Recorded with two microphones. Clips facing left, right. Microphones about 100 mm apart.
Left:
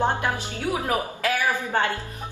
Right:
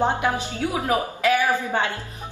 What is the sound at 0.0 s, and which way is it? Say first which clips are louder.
A woman's voice: right 2 dB; 15° right (ahead or behind).